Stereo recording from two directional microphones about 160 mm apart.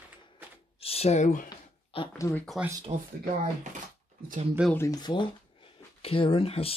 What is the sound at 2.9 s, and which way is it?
Speech, 35° right (ahead or behind).